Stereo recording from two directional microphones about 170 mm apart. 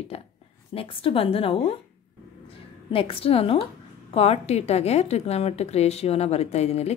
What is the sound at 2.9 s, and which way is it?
A woman's voice, 35° left (ahead or behind).